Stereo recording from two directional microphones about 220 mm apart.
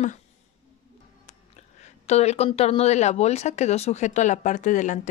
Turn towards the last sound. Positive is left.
turn(degrees=35)  # may be behind; listen again after turning